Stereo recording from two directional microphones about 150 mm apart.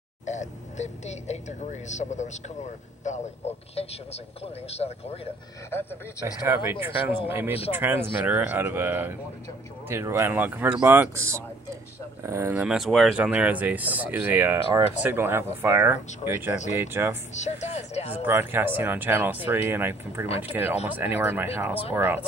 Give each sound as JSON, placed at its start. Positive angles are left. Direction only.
{"t": 0.2, "sound": "a man's voice", "side_deg": 50}
{"t": 5.7, "sound": "speech", "side_deg": 15}
{"t": 6.4, "sound": "speech", "side_deg": -15}
{"t": 12.5, "sound": "speech", "side_deg": -5}
{"t": 17.3, "sound": "a man's voice", "side_deg": 50}
{"t": 18.1, "sound": "speech", "side_deg": -15}